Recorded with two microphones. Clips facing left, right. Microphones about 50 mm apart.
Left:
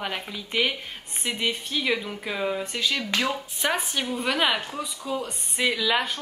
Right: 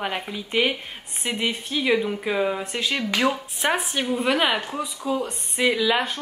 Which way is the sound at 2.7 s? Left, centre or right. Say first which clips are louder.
Right 2 dB; right.